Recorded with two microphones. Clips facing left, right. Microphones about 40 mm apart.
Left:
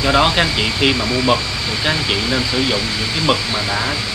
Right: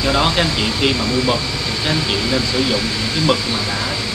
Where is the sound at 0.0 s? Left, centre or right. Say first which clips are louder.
Left 2 dB; centre.